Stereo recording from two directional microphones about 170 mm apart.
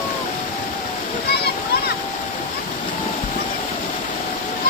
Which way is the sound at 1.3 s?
70° left (ahead or behind).